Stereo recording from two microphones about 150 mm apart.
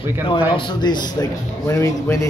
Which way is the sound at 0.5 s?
30° left (ahead or behind).